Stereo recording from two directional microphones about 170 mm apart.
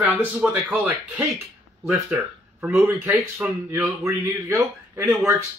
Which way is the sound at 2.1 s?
15° right (ahead or behind).